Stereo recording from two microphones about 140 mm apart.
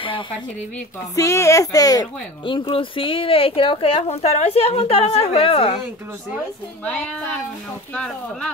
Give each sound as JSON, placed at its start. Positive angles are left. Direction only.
{"t": 1.1, "sound": "speech", "side_deg": 20}
{"t": 6.8, "sound": "speech", "side_deg": 10}